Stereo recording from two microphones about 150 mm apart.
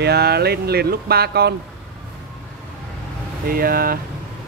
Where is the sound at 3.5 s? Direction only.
75° right (ahead or behind).